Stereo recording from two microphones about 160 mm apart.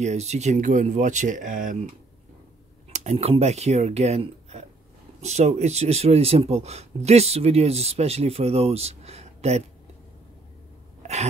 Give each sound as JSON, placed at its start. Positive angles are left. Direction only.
{"t": 0.0, "sound": "speech", "side_deg": -45}
{"t": 2.9, "sound": "speech", "side_deg": -45}
{"t": 11.0, "sound": "a sound", "side_deg": -45}